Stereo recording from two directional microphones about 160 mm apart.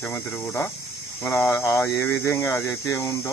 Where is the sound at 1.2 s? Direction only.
15° left (ahead or behind).